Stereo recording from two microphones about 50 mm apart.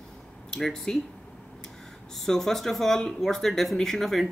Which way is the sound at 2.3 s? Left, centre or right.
Centre.